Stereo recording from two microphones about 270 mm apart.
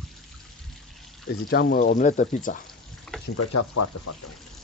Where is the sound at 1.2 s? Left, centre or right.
Left.